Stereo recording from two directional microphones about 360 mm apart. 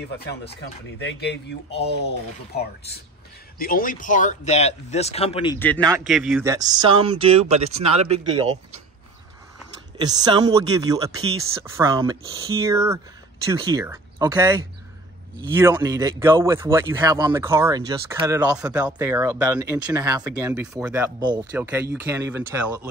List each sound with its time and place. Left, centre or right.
0.3 s speech: left; by 8.5 s centre
9.9 s speech: centre